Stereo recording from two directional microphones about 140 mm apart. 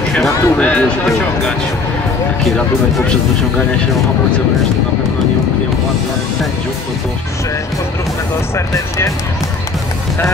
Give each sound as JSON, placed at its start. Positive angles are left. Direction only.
{"t": 0.1, "sound": "speech", "side_deg": 5}
{"t": 8.5, "sound": "speech", "side_deg": 20}